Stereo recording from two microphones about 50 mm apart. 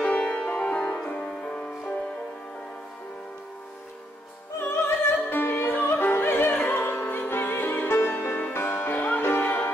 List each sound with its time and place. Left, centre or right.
0.3 s music: left; by 1.3 s centre
1.4 s music: left
4.6 s music: left